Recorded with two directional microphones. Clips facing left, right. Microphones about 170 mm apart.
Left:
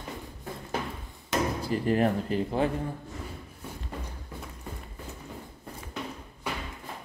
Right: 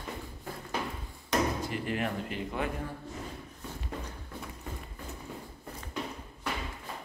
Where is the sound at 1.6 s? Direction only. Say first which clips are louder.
Left 7 dB; 35° left (ahead or behind).